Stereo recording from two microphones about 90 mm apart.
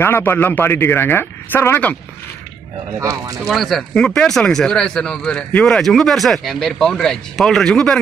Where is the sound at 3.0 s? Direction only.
35° right (ahead or behind).